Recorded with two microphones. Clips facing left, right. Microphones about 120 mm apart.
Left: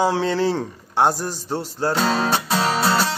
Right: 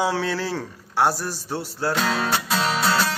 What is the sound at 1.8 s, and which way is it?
Speech, 15° left (ahead or behind).